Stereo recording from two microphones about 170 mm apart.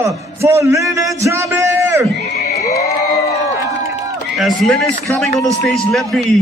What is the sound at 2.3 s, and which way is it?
Neigh, 40° left (ahead or behind).